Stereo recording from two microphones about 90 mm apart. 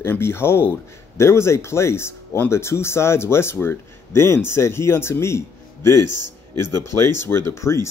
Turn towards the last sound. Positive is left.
turn(degrees=30)  # may be behind; listen again after turning